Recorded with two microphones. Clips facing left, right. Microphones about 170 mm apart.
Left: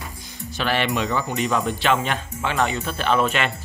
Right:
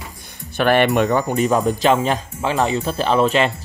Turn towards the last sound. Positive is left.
turn(degrees=-30)  # may be behind; listen again after turning